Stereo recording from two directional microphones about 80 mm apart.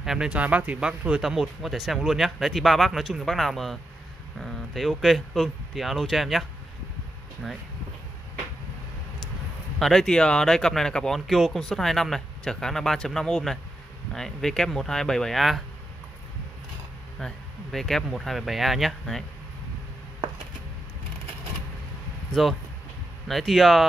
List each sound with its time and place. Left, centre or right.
0.0 s speech: centre
0.3 s speech: centre
9.8 s speech: centre
17.2 s speech: centre
22.3 s speech: centre